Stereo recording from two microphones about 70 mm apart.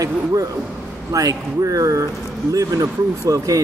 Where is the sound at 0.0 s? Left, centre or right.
Right.